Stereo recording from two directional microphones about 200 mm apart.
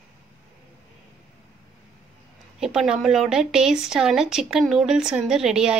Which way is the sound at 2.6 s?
5° right (ahead or behind).